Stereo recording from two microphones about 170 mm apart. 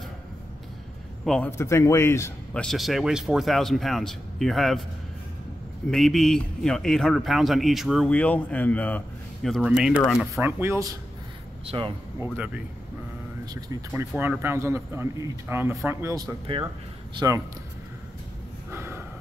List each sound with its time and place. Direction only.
1.2 s a man's voice: centre (ahead or behind)
1.6 s speech: 15° left (ahead or behind)
2.6 s speech: centre (ahead or behind)
5.9 s speech: centre (ahead or behind)
10.4 s speech: 15° right (ahead or behind)
11.6 s speech: 30° right (ahead or behind)
13.5 s speech: 20° right (ahead or behind)
14.1 s speech: 10° right (ahead or behind)
18.7 s snort: 15° right (ahead or behind)